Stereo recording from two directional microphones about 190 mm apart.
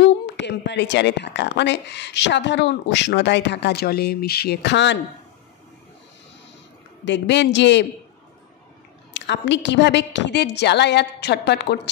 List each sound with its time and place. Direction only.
0.0 s a woman's voice: 65° left (ahead or behind)
7.1 s a woman's voice: 65° left (ahead or behind)
9.1 s a woman's voice: 70° left (ahead or behind)